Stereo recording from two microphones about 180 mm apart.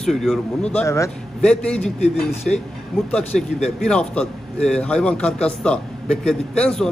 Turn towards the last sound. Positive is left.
turn(degrees=5)  # may be behind; listen again after turning